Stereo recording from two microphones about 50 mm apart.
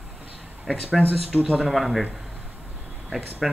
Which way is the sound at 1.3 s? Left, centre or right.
Right.